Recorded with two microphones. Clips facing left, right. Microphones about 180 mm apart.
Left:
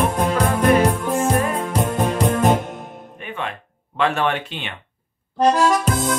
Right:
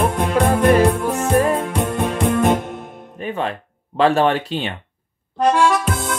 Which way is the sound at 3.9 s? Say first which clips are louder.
Right 5 dB; 35° right (ahead or behind).